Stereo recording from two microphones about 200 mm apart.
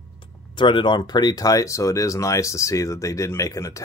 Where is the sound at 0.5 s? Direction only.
25° left (ahead or behind).